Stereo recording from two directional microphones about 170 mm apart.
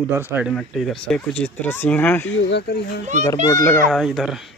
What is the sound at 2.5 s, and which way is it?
Speech, 80° left.